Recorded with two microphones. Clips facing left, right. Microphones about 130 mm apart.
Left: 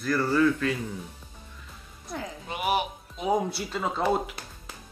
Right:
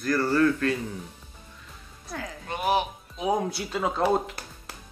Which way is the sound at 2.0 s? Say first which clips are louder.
Left 1 dB; 20° left (ahead or behind).